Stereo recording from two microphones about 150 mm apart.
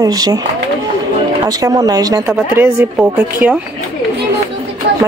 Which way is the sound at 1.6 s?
25° right (ahead or behind).